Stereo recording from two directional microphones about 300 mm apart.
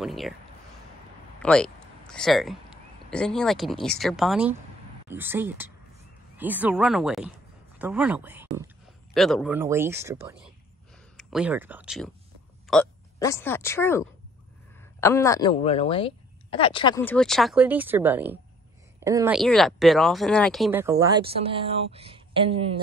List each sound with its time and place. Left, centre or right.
0.0 s speech: centre
1.4 s a woman's voice: centre